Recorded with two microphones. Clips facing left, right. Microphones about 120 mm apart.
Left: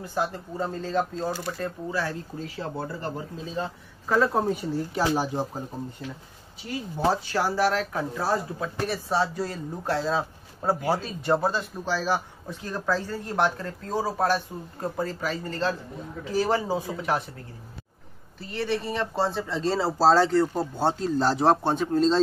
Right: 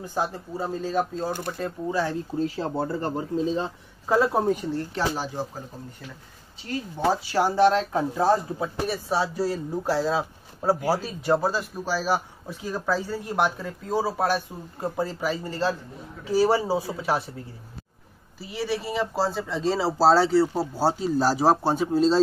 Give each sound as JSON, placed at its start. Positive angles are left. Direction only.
{"t": 0.0, "sound": "speech", "side_deg": -20}
{"t": 0.6, "sound": "speech", "side_deg": -10}
{"t": 2.4, "sound": "speech", "side_deg": -30}
{"t": 4.1, "sound": "speech", "side_deg": -15}
{"t": 4.4, "sound": "speech", "side_deg": 0}
{"t": 7.3, "sound": "speech", "side_deg": -20}
{"t": 8.5, "sound": "a man's voice", "side_deg": -10}
{"t": 18.4, "sound": "a man's voice", "side_deg": -10}